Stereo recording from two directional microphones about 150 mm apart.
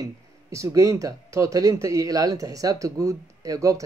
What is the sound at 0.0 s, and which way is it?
Speech, 20° right (ahead or behind).